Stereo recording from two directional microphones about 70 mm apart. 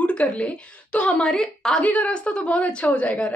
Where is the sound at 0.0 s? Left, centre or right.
Centre.